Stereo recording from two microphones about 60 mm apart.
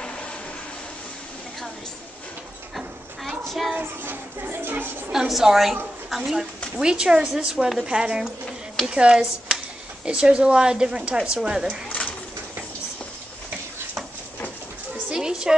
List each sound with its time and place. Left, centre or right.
3.3 s a sound: centre
3.7 s speech: right
5.1 s a woman's voice: centre
6.8 s a woman's voice: centre
15.0 s dog: centre